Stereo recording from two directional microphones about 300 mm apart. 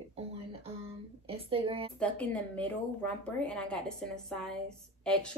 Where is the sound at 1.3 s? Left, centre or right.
Centre.